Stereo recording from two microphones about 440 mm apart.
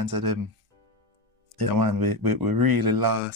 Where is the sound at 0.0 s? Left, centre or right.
Right.